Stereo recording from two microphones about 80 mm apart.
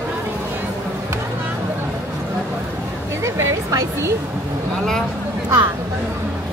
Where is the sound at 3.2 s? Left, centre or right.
Right.